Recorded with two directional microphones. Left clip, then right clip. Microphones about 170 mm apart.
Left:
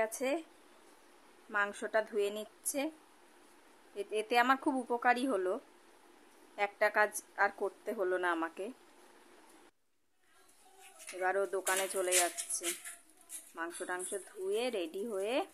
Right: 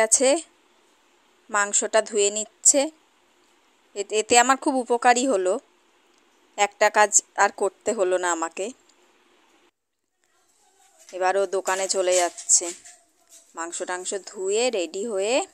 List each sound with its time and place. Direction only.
0.0 s a woman's voice: 45° right (ahead or behind)
1.5 s a woman's voice: 40° right (ahead or behind)
3.9 s a woman's voice: 40° right (ahead or behind)
11.1 s a woman's voice: 40° right (ahead or behind)